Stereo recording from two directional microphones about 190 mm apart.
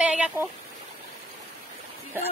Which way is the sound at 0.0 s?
5° right (ahead or behind).